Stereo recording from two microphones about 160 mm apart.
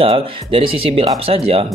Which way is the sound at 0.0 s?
35° right (ahead or behind).